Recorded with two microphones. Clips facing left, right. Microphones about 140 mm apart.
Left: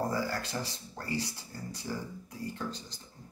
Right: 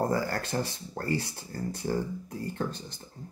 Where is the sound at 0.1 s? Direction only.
55° right (ahead or behind).